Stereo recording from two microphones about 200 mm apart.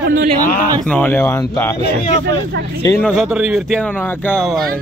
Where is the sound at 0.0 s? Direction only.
45° right (ahead or behind).